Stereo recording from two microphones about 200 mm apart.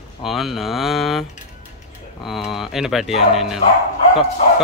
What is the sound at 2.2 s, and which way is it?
Bow-wow, centre (ahead or behind).